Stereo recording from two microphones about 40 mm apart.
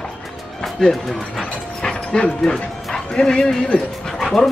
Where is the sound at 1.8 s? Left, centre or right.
Left.